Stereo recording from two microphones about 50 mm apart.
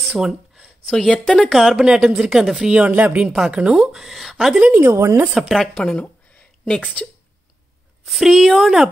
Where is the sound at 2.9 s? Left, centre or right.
Right.